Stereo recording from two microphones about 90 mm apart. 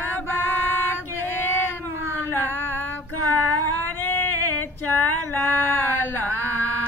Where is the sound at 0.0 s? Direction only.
20° left (ahead or behind).